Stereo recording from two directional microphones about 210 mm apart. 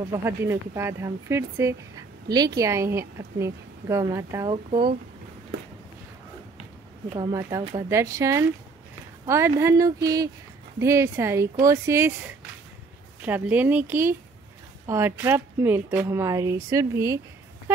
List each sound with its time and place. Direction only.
0.1 s a woman's voice: 10° right (ahead or behind)
7.2 s a woman's voice: 20° right (ahead or behind)
13.2 s a woman's voice: 10° right (ahead or behind)